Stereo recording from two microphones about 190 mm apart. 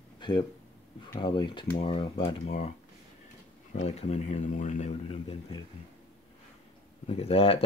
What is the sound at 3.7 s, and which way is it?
Speech, 35° left (ahead or behind).